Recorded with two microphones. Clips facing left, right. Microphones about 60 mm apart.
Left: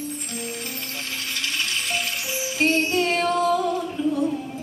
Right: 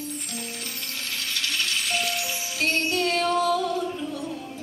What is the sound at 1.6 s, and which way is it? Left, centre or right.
Music, left.